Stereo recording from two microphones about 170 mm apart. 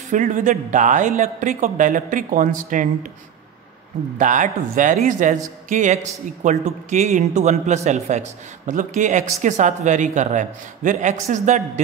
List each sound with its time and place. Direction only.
0.1 s a man's voice: 50° right (ahead or behind)
4.2 s a man's voice: 50° right (ahead or behind)